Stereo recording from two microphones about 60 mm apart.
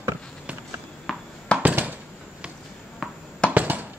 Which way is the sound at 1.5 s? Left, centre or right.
Centre.